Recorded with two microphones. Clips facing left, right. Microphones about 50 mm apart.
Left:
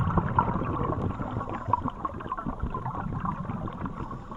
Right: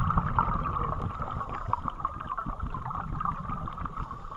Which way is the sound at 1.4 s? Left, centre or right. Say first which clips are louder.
Left 5 dB; centre.